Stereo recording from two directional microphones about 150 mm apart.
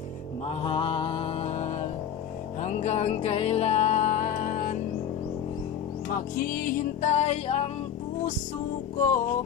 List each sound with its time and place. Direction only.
0.5 s mantra: 35° left (ahead or behind)
2.6 s music: 45° left (ahead or behind); by 4.7 s 60° left (ahead or behind)
6.1 s music: 75° left (ahead or behind); by 7.7 s 45° left (ahead or behind)
8.9 s music: 60° left (ahead or behind)